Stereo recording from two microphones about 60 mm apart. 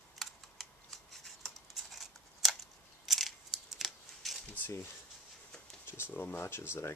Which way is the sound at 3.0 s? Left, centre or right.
Centre.